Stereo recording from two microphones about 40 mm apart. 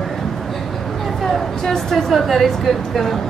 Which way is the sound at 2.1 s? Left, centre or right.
Centre.